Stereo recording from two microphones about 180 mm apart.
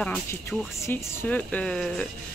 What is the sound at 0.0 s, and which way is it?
A woman's voice, 10° left (ahead or behind).